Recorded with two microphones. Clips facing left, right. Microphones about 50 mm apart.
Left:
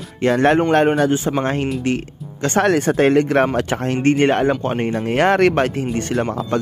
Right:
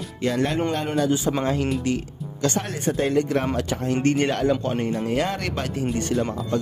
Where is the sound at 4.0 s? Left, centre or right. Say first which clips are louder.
Left 7 dB; left.